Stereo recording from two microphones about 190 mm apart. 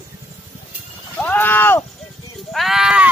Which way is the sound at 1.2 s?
10° left (ahead or behind).